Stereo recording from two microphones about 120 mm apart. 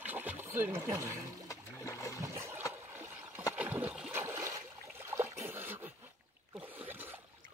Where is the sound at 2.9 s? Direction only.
20° right (ahead or behind).